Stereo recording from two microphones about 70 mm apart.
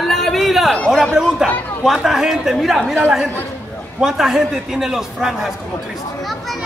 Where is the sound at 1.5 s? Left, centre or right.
Left.